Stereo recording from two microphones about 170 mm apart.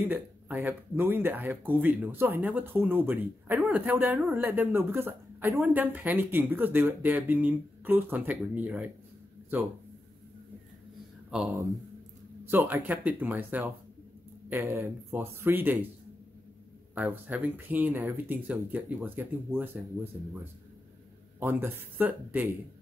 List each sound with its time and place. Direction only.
0.0 s a woman's voice: 10° right (ahead or behind)
11.2 s speech: centre (ahead or behind)
11.5 s a woman's voice: 20° right (ahead or behind)
16.9 s a woman's voice: 10° right (ahead or behind)
21.4 s a woman's voice: 10° right (ahead or behind)